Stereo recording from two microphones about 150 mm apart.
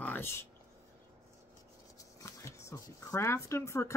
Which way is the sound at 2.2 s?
20° left (ahead or behind).